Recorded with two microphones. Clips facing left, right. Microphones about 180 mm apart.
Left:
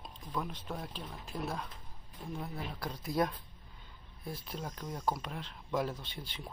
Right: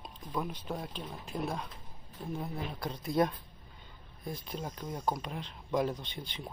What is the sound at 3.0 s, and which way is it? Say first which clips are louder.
Speech: right 3 dB; centre (ahead or behind).